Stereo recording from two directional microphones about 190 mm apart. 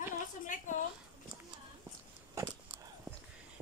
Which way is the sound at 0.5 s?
45° left (ahead or behind).